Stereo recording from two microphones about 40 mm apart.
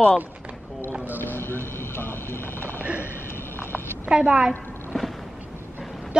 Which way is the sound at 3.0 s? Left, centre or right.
Left.